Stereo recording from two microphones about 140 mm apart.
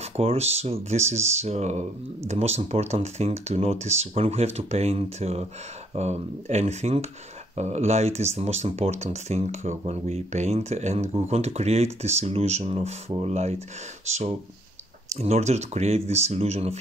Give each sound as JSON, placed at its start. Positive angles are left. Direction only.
{"t": 0.0, "sound": "speech", "side_deg": -45}
{"t": 15.1, "sound": "speech", "side_deg": -50}